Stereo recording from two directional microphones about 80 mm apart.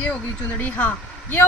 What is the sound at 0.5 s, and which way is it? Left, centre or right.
Speech, left.